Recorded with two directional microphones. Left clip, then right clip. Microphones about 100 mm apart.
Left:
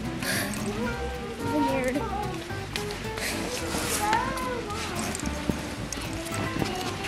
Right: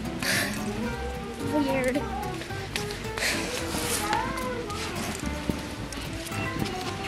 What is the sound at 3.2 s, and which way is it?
Music, 15° right (ahead or behind).